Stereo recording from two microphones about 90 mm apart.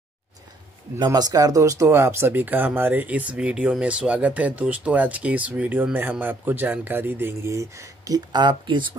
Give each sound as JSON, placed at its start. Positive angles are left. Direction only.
{"t": 0.9, "sound": "speech", "side_deg": -50}